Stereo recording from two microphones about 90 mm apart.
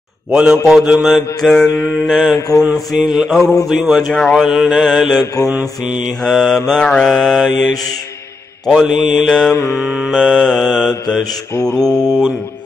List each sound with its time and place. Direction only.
0.3 s mantra: 10° right (ahead or behind)
2.3 s mantra: 40° left (ahead or behind)
2.7 s mantra: 5° right (ahead or behind)
5.2 s mantra: 35° left (ahead or behind)
5.5 s mantra: 15° right (ahead or behind)
6.0 s mantra: centre (ahead or behind)
9.8 s mantra: 5° right (ahead or behind)
10.2 s mantra: 5° left (ahead or behind)